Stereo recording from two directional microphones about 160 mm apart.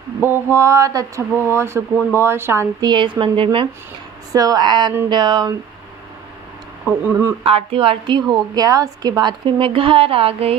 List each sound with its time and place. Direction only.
0.2 s speech: 15° right (ahead or behind)
2.9 s a woman's voice: 30° right (ahead or behind)
6.9 s speech: 15° right (ahead or behind)
7.4 s a woman's voice: 35° right (ahead or behind)